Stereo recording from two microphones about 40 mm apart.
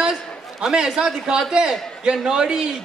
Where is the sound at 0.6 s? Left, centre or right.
Centre.